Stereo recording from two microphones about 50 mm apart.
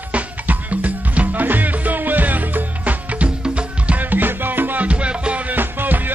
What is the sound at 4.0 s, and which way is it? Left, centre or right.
Music, right.